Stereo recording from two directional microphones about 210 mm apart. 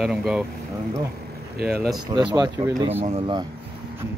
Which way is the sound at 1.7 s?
Centre (ahead or behind).